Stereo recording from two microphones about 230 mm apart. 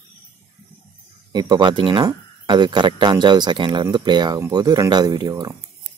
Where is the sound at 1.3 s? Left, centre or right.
Centre.